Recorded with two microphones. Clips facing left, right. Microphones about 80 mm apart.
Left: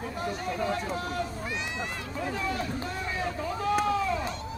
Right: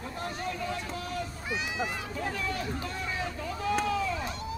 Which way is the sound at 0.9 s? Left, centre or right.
Left.